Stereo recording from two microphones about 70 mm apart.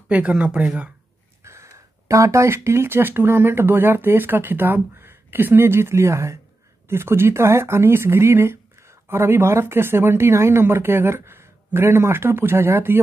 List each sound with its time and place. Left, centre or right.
0.1 s speech: centre
1.4 s speech: right